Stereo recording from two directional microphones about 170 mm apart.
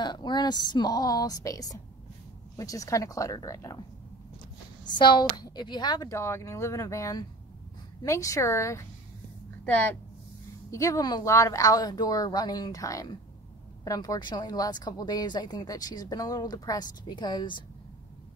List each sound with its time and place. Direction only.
0.0 s speech: 25° left (ahead or behind)
4.9 s a woman's voice: 25° left (ahead or behind)
10.7 s speech: 20° left (ahead or behind)